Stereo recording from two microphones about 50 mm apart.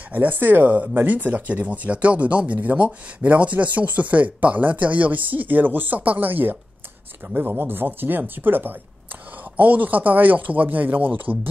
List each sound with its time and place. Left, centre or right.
0.1 s speech: right